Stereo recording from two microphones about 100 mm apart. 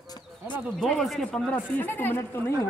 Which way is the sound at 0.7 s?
5° left (ahead or behind).